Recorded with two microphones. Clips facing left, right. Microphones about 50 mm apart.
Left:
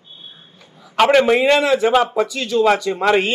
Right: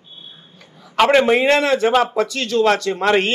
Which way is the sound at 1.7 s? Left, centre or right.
Centre.